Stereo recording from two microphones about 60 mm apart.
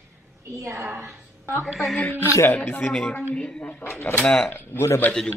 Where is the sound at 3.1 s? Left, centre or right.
Centre.